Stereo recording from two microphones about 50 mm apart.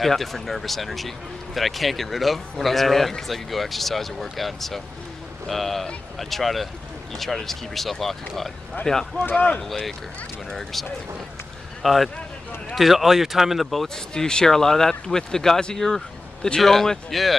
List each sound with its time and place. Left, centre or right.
0.0 s speech: centre
9.2 s speech: left
11.8 s speech: centre
13.9 s speech: centre